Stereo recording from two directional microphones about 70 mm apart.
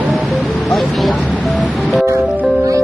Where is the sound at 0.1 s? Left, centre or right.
Centre.